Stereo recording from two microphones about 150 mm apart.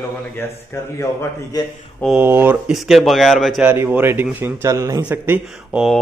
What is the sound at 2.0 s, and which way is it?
Speech, 10° right (ahead or behind).